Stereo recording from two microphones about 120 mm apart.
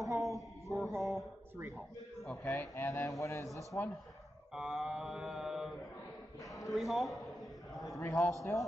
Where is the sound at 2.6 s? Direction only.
25° left (ahead or behind).